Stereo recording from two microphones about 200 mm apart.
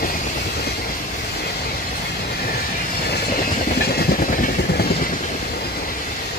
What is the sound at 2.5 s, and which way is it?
Vehicle, 50° left (ahead or behind).